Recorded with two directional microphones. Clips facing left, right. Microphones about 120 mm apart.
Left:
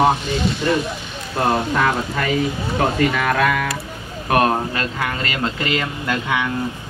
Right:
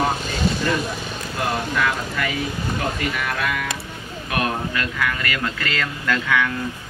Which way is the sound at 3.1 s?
55° left (ahead or behind).